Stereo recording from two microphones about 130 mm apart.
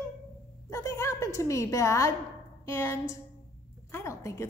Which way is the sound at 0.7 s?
25° left (ahead or behind).